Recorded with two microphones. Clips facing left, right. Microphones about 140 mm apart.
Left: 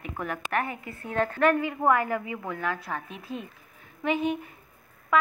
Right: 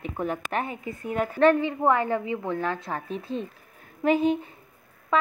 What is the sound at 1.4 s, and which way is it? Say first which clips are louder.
A woman's voice: right 4 dB; 25° right (ahead or behind).